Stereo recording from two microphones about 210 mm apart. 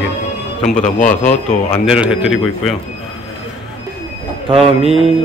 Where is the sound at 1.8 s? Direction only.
5° right (ahead or behind).